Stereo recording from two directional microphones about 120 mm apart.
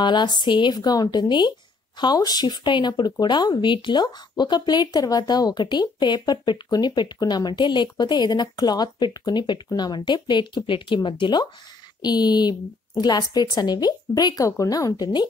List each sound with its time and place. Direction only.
0.0 s speech: 40° left (ahead or behind)